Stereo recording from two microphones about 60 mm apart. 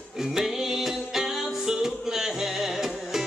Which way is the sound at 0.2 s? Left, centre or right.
Centre.